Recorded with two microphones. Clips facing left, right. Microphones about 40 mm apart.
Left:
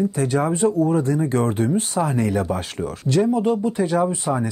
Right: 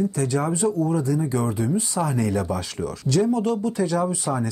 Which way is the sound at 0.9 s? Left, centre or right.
Left.